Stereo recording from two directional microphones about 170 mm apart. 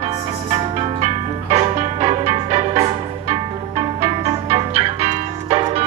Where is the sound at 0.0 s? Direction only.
35° right (ahead or behind).